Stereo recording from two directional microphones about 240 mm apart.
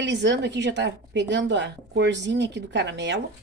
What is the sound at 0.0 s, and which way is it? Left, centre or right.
A woman's voice, right.